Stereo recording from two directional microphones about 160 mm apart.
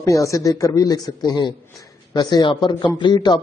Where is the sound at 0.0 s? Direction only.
20° left (ahead or behind).